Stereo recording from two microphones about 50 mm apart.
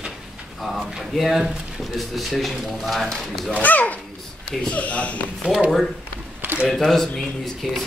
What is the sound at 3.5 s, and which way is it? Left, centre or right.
A child's voice, left.